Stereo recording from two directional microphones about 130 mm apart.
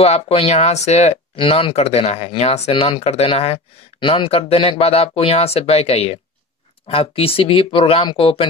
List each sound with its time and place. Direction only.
0.0 s speech: 50° left (ahead or behind)
1.3 s speech: 45° left (ahead or behind)